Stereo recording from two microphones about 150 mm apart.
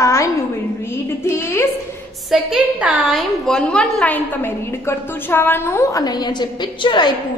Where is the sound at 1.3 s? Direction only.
15° left (ahead or behind).